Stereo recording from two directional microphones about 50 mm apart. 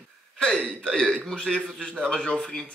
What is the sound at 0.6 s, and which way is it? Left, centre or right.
Speech, centre.